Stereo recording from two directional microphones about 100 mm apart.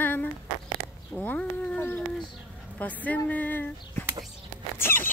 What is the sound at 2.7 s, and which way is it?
Speech, 15° left (ahead or behind).